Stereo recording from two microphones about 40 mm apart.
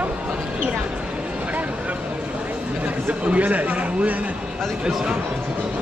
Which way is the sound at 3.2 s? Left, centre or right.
Right.